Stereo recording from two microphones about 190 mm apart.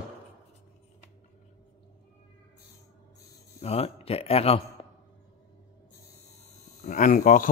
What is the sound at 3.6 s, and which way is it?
Speech, 30° left (ahead or behind).